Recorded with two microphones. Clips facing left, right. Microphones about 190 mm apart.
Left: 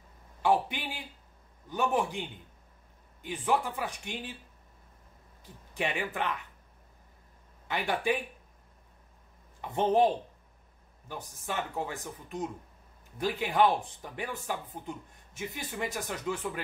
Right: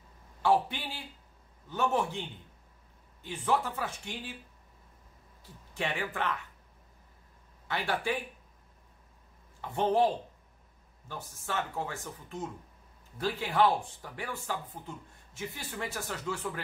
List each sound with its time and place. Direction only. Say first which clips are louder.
0.4 s speech: even; 15° left (ahead or behind)
5.4 s speech: left 2 dB; 15° left (ahead or behind)
7.6 s speech: left 2 dB; 15° left (ahead or behind)
9.6 s speech: left 2 dB; 20° left (ahead or behind)